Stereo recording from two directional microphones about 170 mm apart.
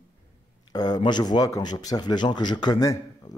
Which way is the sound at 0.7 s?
25° left (ahead or behind).